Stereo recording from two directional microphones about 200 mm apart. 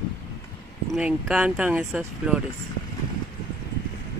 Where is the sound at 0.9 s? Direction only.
5° right (ahead or behind).